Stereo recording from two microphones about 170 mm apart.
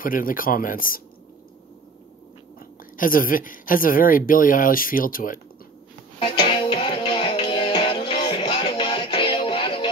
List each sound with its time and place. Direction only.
0.0 s speech: 55° left (ahead or behind)
3.0 s speech: 55° left (ahead or behind)
6.1 s music: 35° left (ahead or behind)